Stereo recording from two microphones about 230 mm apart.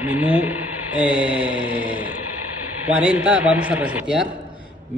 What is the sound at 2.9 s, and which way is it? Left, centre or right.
Speech, centre.